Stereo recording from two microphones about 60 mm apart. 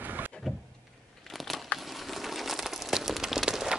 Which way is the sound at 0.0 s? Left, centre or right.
Right.